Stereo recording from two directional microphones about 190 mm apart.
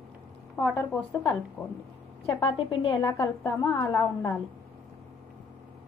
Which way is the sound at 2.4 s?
25° left (ahead or behind).